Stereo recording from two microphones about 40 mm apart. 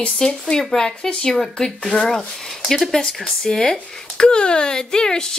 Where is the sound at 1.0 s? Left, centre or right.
Left.